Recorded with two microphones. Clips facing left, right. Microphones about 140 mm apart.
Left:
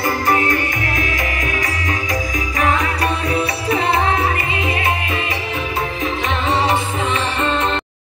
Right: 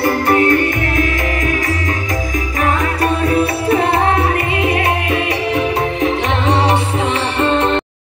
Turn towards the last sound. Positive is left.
turn(degrees=-65)  # may be behind; listen again after turning